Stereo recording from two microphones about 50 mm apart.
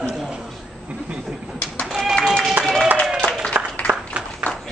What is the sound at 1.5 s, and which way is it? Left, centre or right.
Pigeon, left.